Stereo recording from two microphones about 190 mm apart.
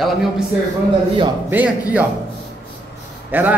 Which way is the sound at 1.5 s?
10° right (ahead or behind).